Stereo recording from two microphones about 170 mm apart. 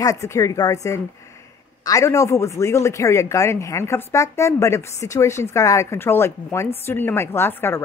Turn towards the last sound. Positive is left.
turn(degrees=15)  # may be behind; listen again after turning